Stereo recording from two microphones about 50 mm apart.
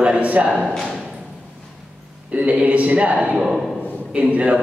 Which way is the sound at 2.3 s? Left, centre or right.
Right.